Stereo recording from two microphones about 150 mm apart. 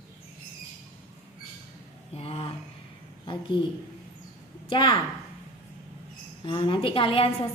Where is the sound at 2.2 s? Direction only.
40° left (ahead or behind).